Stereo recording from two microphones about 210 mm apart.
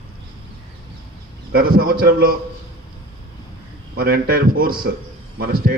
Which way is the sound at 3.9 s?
45° right (ahead or behind).